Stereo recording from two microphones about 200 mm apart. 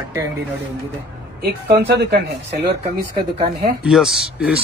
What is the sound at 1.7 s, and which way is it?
Speech, 55° right (ahead or behind).